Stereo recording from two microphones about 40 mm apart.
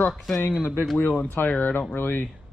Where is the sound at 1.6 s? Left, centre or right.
Left.